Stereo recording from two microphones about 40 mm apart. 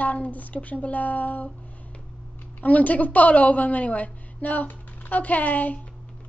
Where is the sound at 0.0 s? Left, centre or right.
Left.